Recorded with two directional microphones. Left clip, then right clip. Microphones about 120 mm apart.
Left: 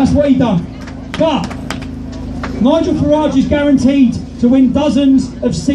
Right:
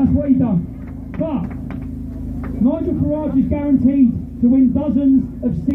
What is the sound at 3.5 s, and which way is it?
A man's voice, 30° left (ahead or behind).